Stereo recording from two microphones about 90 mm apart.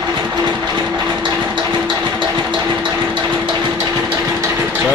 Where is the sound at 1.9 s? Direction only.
50° right (ahead or behind).